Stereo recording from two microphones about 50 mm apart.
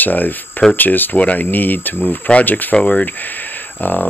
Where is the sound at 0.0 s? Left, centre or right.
Left.